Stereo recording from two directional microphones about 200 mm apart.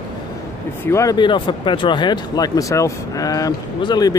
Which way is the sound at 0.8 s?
15° left (ahead or behind).